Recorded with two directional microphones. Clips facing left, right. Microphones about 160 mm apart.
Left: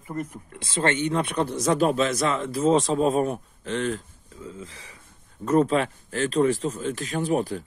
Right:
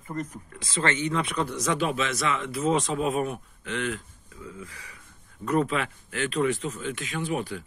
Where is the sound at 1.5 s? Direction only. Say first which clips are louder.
Left 7 dB; 40° left (ahead or behind).